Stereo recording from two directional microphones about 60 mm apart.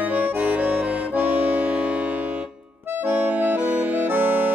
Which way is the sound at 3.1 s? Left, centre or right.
Right.